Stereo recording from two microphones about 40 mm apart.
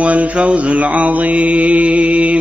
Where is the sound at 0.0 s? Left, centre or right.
Right.